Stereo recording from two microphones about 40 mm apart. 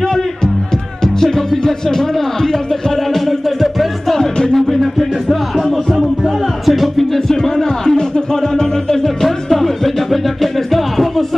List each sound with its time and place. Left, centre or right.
0.0 s music: centre
4.2 s music: centre
4.9 s music: centre